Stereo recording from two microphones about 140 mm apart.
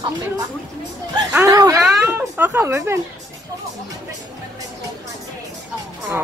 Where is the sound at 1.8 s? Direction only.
15° right (ahead or behind).